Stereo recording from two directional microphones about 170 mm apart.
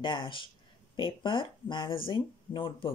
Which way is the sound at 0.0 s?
30° left (ahead or behind).